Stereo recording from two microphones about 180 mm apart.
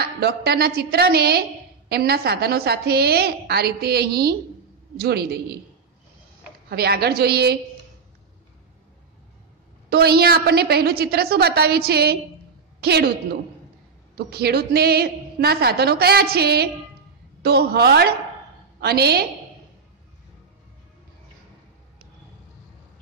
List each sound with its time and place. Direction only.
0.0 s a woman's voice: 60° right (ahead or behind)
6.7 s a woman's voice: 60° right (ahead or behind)
9.8 s a woman's voice: 60° right (ahead or behind)
14.1 s a woman's voice: 60° right (ahead or behind)